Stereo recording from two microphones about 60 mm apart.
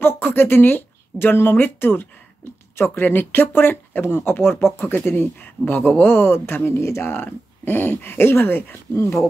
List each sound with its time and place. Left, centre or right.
0.0 s speech: left
7.1 s speech: left